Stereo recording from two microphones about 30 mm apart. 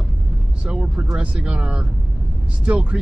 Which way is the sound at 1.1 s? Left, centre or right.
Right.